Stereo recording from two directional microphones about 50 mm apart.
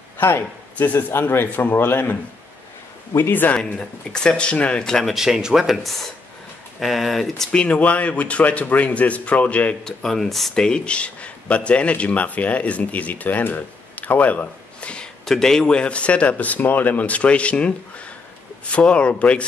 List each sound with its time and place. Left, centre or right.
0.2 s a man's voice: left
3.5 s speech: centre
4.8 s speech: centre
5.1 s speech: centre
7.5 s speech: left
9.8 s speech: centre
10.5 s speech: centre
15.2 s speech: centre; by 19.4 s left